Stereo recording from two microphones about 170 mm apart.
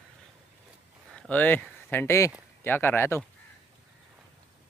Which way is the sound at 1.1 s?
5° left (ahead or behind).